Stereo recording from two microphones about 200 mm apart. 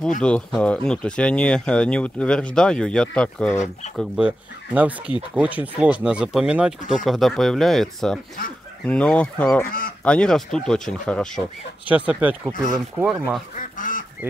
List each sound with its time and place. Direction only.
0.2 s speech: 5° left (ahead or behind)
3.5 s speech: 35° left (ahead or behind)
4.0 s speech: 5° right (ahead or behind)
8.8 s fowl: 5° left (ahead or behind)
9.7 s speech: 45° left (ahead or behind)
10.0 s speech: 5° left (ahead or behind)
11.9 s speech: 10° right (ahead or behind)
13.6 s goose: 40° left (ahead or behind)